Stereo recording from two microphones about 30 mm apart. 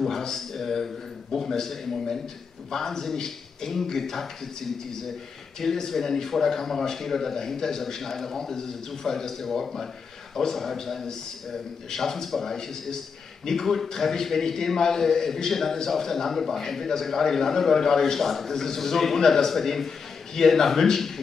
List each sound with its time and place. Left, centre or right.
0.1 s a man's voice: centre